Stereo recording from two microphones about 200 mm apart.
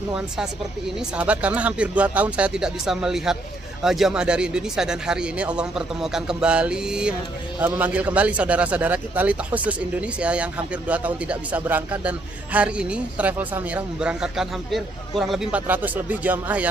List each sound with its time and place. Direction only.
0.9 s a man's voice: 5° right (ahead or behind)